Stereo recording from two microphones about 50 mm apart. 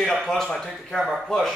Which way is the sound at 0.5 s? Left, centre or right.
Centre.